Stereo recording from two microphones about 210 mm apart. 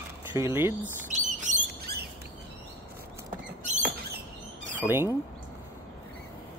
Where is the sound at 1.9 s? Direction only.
50° right (ahead or behind).